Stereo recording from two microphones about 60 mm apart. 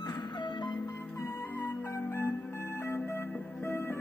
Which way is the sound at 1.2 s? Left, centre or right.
Left.